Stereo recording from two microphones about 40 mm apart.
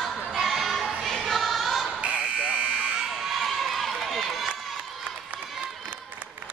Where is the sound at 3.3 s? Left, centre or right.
Centre.